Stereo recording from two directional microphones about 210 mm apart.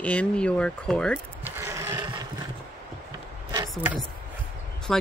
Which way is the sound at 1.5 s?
15° right (ahead or behind).